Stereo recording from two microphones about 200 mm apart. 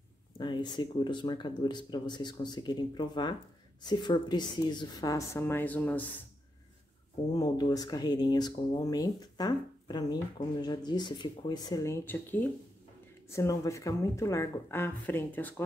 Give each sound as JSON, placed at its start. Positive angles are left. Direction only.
{"t": 0.4, "sound": "speech", "side_deg": 20}
{"t": 7.3, "sound": "speech", "side_deg": 20}